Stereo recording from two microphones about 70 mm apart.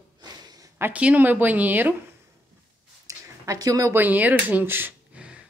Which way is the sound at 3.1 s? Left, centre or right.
Right.